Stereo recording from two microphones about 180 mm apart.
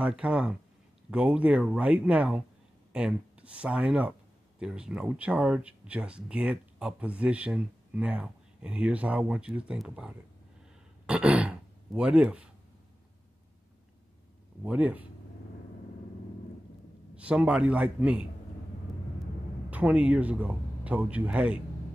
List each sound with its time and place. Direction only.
0.0 s speech: 5° right (ahead or behind)
14.6 s speech: 10° right (ahead or behind)
17.1 s speech: 5° right (ahead or behind)
19.7 s speech: 5° right (ahead or behind)